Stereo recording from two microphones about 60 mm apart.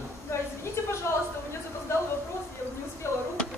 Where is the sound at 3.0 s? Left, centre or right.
Left.